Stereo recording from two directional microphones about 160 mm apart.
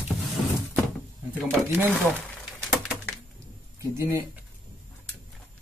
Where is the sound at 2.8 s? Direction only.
Centre (ahead or behind).